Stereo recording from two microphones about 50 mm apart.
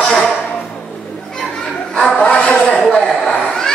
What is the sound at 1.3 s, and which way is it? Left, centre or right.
Children playing, centre.